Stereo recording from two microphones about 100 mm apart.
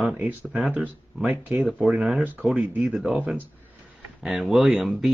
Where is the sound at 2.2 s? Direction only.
15° right (ahead or behind).